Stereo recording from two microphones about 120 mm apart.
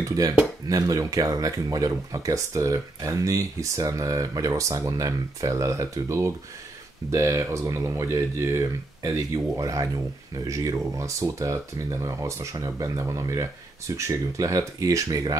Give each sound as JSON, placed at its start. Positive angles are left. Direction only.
{"t": 0.0, "sound": "speech", "side_deg": -30}